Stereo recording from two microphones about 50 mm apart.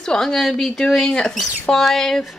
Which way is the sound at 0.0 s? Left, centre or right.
Centre.